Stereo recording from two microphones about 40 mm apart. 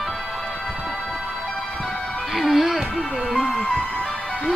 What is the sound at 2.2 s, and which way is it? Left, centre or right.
Speech, centre.